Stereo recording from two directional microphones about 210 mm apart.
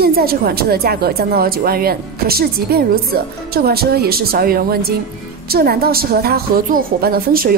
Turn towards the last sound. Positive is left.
turn(degrees=-45)  # may be behind; listen again after turning